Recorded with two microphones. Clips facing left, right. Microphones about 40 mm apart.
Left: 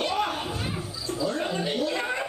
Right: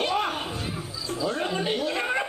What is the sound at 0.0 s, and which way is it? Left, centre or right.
Music, centre.